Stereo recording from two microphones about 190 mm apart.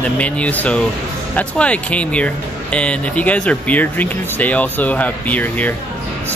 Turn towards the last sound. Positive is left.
turn(degrees=10)  # may be behind; listen again after turning